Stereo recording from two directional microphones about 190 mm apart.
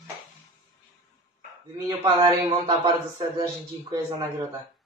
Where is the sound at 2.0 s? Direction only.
25° right (ahead or behind).